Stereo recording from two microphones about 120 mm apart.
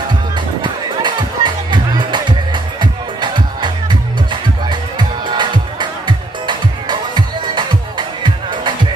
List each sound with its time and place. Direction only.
0.6 s music: 40° right (ahead or behind)